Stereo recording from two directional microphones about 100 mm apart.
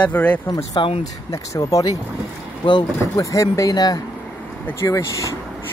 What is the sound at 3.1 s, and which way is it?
Speech, 35° left (ahead or behind).